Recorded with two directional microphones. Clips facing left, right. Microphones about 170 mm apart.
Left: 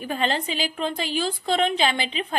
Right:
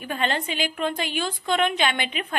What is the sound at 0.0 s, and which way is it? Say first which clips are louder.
A woman's voice: left 1 dB; 35° left (ahead or behind).